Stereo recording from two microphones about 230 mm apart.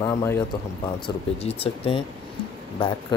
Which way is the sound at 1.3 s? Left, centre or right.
Left.